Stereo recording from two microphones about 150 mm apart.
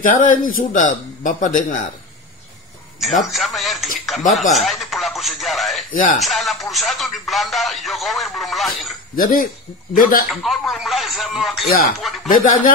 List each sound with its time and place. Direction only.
0.0 s a man's voice: 60° left (ahead or behind)
3.0 s music: centre (ahead or behind)
4.6 s speech: centre (ahead or behind)
5.9 s a man's voice: 65° left (ahead or behind)
6.2 s music: centre (ahead or behind)
9.1 s speech: 70° left (ahead or behind)
10.3 s music: centre (ahead or behind)
12.3 s a man's voice: 65° left (ahead or behind)